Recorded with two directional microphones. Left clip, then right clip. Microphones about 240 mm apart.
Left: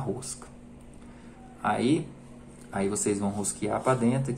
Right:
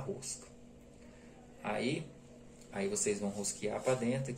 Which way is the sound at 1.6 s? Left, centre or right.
Left.